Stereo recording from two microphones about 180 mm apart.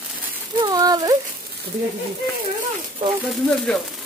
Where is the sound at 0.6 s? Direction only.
20° right (ahead or behind).